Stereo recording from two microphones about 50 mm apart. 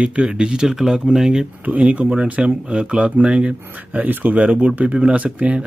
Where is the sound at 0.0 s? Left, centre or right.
Right.